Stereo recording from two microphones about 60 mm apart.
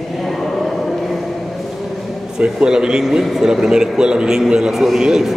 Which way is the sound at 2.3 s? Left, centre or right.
Centre.